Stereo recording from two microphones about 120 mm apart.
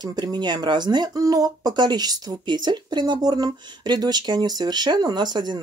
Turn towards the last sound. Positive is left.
turn(degrees=-35)  # may be behind; listen again after turning